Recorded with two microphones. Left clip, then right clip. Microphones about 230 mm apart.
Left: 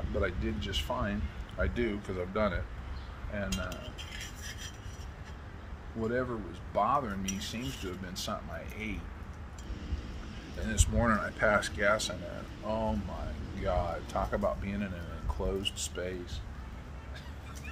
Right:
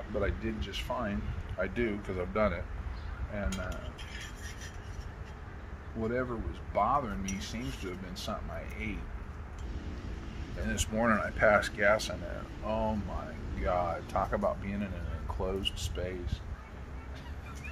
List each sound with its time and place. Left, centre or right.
0.2 s speech: centre
3.4 s a sound: left
5.9 s speech: centre
10.6 s speech: centre